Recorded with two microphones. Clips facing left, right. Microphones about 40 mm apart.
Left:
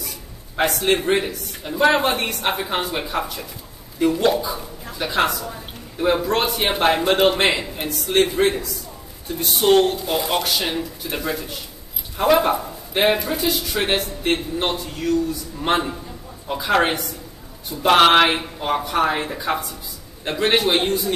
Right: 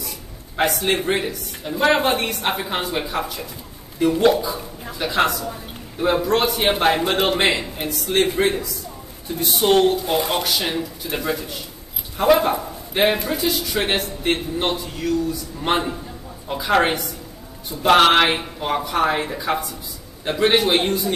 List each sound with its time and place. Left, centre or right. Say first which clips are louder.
0.6 s a man's voice: left 1 dB; centre